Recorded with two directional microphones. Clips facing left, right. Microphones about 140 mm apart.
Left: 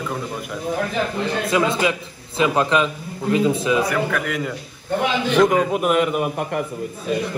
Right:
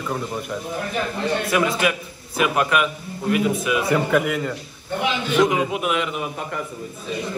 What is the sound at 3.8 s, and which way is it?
Speech, 25° right (ahead or behind).